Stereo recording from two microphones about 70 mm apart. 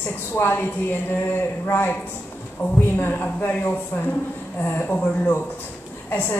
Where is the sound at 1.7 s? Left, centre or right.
Left.